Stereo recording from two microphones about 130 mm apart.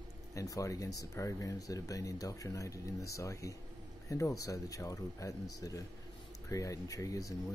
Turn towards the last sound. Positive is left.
turn(degrees=25)  # may be behind; listen again after turning